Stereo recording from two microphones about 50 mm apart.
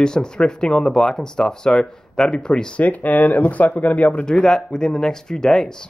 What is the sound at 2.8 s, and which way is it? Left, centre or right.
Speech, left.